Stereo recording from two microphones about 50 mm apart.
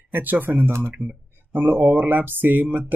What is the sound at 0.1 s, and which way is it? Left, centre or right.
Speech, right.